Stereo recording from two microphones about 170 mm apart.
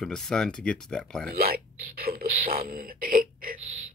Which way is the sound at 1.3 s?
60° right (ahead or behind).